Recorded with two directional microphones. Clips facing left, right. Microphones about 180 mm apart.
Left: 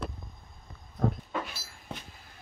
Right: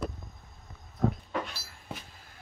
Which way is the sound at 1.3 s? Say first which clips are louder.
Right 1 dB; centre (ahead or behind).